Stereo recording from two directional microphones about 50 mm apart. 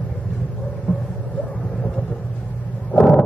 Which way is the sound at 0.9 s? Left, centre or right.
Left.